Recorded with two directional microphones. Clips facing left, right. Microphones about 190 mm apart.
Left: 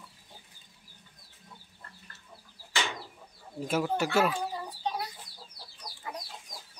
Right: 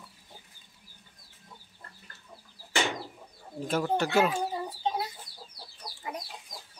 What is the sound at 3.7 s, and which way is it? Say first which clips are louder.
Speech: right 1 dB; 5° left (ahead or behind).